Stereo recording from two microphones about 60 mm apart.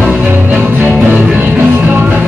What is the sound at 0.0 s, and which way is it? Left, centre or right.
Music, centre.